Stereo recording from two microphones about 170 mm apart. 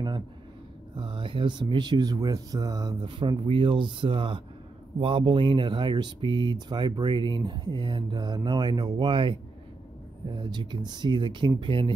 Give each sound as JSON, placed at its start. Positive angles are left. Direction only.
{"t": 0.9, "sound": "speech", "side_deg": -30}